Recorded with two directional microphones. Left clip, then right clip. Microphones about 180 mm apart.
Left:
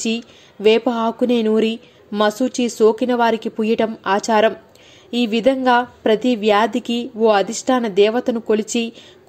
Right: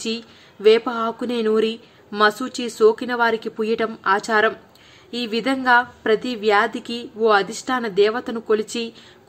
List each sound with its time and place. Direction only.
0.0 s speech: 20° left (ahead or behind)